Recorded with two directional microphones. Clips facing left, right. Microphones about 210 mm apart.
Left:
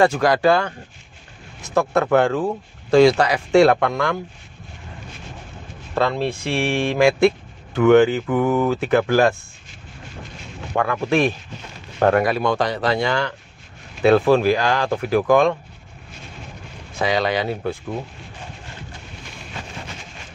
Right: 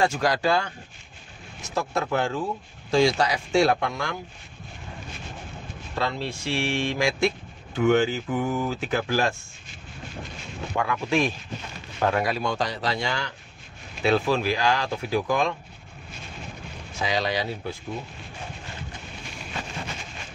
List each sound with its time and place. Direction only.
0.0 s speech: 60° left (ahead or behind)
5.9 s speech: 55° left (ahead or behind)
10.7 s speech: 55° left (ahead or behind)
17.0 s speech: 60° left (ahead or behind)